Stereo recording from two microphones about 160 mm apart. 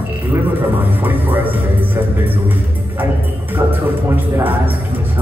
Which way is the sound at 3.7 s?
10° right (ahead or behind).